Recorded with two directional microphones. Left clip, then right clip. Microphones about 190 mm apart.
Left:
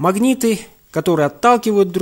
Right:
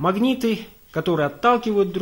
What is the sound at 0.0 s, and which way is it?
Speech, 40° left (ahead or behind).